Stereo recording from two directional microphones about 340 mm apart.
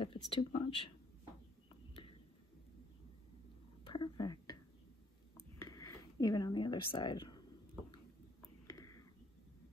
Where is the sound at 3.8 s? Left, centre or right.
Centre.